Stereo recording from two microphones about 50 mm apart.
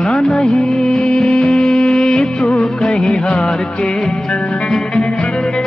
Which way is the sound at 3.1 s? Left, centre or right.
Centre.